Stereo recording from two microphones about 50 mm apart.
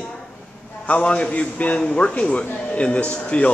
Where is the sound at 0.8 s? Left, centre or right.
Left.